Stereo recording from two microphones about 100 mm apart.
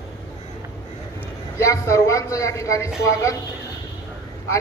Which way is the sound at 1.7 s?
30° left (ahead or behind).